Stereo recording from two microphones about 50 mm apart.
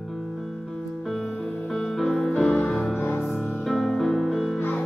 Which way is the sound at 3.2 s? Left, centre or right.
Centre.